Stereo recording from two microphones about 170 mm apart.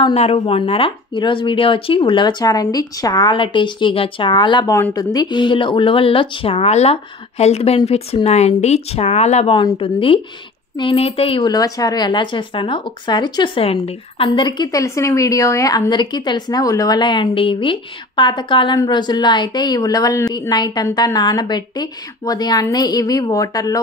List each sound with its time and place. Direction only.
0.0 s speech: 35° left (ahead or behind)
9.6 s speech: 30° left (ahead or behind)